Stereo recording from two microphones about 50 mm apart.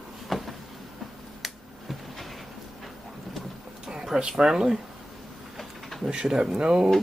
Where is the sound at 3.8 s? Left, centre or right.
Centre.